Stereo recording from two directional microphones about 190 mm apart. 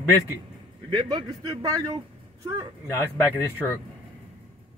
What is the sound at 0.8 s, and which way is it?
A man's voice, 20° right (ahead or behind).